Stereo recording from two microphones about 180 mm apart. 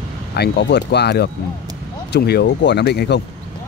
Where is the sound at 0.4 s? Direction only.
70° left (ahead or behind).